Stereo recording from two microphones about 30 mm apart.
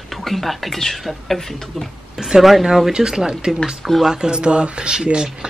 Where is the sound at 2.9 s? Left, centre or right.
Right.